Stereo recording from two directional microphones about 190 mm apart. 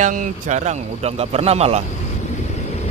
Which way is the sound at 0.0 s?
40° right (ahead or behind).